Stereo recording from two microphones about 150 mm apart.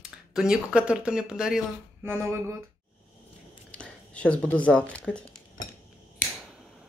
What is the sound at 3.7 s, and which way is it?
Speech, 10° left (ahead or behind).